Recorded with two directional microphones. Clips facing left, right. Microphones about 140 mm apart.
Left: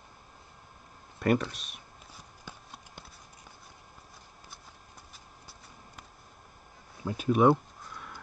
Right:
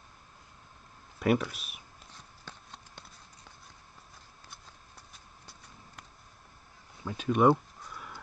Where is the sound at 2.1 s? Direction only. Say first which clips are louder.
Left 2 dB; 10° left (ahead or behind).